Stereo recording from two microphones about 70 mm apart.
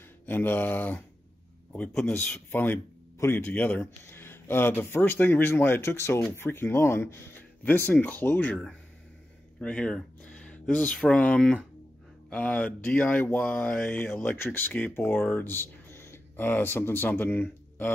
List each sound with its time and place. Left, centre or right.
0.3 s speech: left
2.0 s speech: centre
2.5 s speech: left
3.8 s speech: left
9.6 s a sound: centre
11.1 s speech: centre